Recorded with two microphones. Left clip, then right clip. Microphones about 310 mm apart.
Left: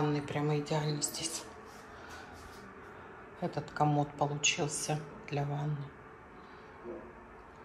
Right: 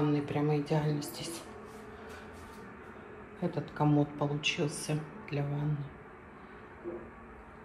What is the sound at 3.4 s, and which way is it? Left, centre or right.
A woman's voice, centre.